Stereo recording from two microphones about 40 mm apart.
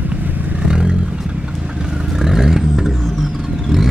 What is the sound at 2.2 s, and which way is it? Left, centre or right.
Vehicle, centre.